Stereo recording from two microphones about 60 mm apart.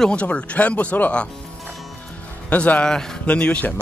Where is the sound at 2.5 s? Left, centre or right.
Left.